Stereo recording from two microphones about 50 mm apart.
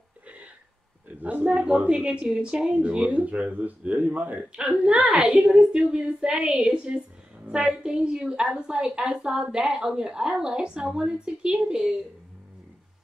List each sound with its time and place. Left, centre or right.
1.2 s a woman's voice: right
3.0 s a woman's voice: right
4.6 s a woman's voice: centre